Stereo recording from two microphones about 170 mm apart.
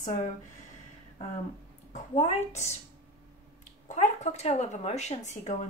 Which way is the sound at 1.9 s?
45° left (ahead or behind).